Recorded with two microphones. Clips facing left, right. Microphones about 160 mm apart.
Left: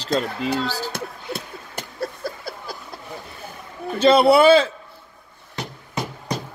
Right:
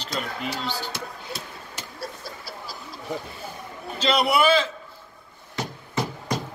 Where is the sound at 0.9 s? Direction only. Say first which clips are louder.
Left 4 dB; 55° left (ahead or behind).